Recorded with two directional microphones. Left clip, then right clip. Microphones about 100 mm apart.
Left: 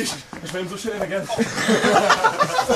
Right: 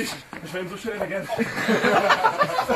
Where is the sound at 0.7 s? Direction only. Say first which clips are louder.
Left 2 dB; 10° right (ahead or behind).